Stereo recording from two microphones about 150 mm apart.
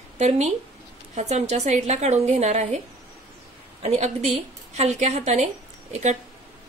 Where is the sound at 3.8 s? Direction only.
45° right (ahead or behind).